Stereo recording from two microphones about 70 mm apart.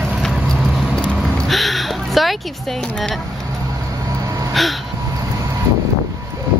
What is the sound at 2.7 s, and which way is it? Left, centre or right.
Speech, centre.